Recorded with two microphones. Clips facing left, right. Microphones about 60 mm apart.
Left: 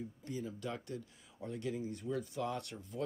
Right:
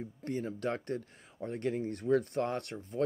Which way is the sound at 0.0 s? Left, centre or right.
Right.